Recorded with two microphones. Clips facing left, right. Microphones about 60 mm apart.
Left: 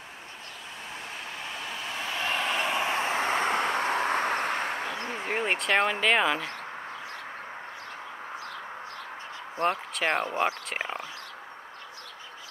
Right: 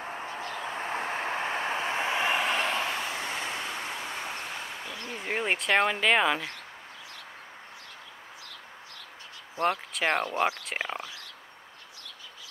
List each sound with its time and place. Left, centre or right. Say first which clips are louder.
0.4 s vehicle: right 8 dB; right
2.3 s a sound: right 1 dB; centre
2.7 s vehicle: left 4 dB; left
4.9 s a sound: left 4 dB; left
5.5 s speech: right 1 dB; centre
9.6 s speech: even; left
9.9 s speech: even; centre